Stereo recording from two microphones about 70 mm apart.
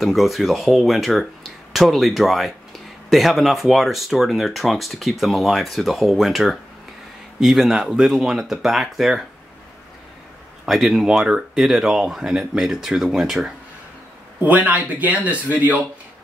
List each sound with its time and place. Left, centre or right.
0.0 s speech: centre
10.6 s speech: centre
14.4 s speech: right